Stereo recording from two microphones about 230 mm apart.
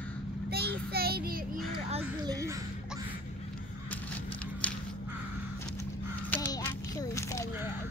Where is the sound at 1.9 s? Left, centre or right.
Right.